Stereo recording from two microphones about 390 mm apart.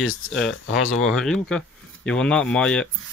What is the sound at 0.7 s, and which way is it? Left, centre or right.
Speech, left.